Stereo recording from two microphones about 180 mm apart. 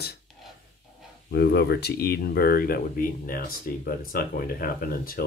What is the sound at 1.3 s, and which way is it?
Speech, 65° left (ahead or behind).